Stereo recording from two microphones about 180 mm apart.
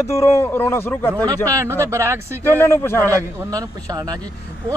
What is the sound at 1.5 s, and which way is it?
Speech, 15° right (ahead or behind).